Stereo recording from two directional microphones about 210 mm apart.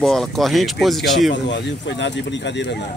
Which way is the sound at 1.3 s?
55° left (ahead or behind).